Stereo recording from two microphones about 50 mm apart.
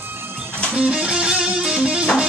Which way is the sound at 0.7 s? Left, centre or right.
Right.